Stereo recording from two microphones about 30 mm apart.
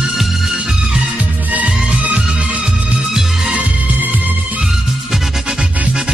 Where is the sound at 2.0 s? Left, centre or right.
Right.